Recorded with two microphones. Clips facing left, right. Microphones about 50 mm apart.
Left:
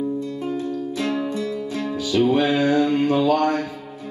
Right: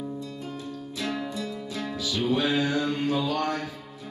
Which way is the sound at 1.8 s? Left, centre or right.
Left.